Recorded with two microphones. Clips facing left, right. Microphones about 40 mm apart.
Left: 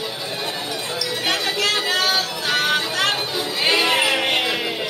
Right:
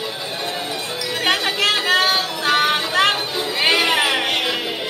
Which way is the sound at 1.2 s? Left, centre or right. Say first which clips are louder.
Right 4 dB; right.